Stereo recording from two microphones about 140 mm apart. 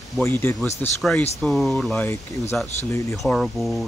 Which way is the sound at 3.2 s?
Centre (ahead or behind).